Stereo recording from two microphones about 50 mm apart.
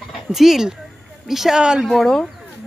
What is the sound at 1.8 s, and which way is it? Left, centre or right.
Speech, centre.